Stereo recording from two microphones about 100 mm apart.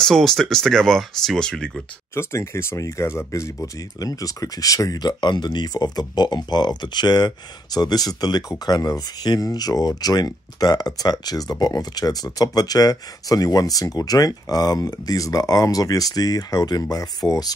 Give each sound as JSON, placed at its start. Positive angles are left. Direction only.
{"t": 0.0, "sound": "speech", "side_deg": 5}
{"t": 2.1, "sound": "speech", "side_deg": 25}